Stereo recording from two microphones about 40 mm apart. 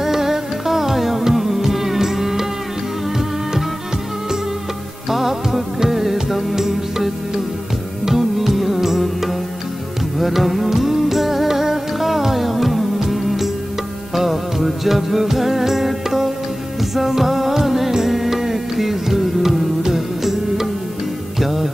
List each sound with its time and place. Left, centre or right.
0.0 s music: centre
5.1 s music: centre